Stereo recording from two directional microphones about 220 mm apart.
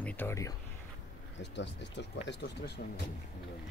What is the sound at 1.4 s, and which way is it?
Speech, 50° left (ahead or behind).